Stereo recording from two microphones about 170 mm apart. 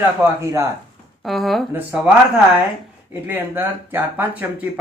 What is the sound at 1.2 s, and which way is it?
Speech, centre (ahead or behind).